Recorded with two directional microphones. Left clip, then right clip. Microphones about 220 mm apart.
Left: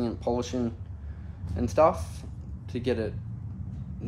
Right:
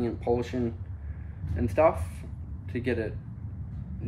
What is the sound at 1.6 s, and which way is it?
Speech, 15° left (ahead or behind).